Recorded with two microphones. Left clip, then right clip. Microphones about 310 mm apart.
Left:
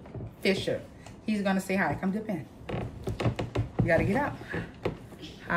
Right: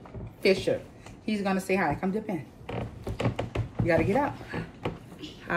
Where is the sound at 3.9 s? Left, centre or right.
Centre.